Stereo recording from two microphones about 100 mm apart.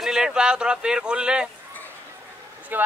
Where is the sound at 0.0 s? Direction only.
5° right (ahead or behind).